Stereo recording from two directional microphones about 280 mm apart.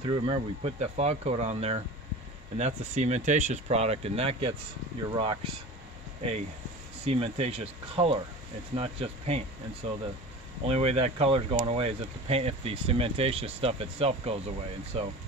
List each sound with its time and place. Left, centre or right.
0.0 s speech: centre
7.1 s speech: right